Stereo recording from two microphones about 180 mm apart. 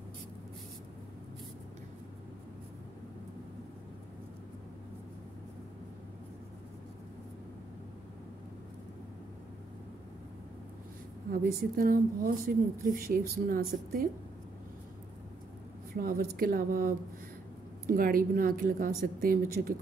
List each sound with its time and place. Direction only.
11.2 s a woman's voice: 50° right (ahead or behind)
16.0 s a woman's voice: 55° right (ahead or behind)